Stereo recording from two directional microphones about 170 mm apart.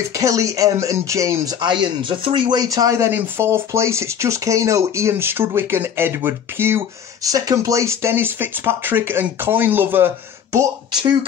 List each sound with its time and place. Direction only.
0.1 s speech: 20° right (ahead or behind)